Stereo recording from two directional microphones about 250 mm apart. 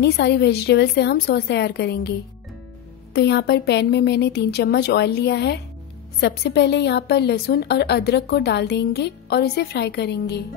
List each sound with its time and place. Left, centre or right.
0.0 s a woman's voice: left